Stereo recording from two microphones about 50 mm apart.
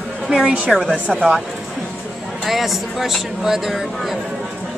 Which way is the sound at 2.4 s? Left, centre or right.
Centre.